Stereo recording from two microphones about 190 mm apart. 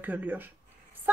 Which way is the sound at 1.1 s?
10° right (ahead or behind).